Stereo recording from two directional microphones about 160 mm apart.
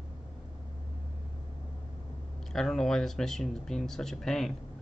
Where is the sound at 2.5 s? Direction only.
Centre (ahead or behind).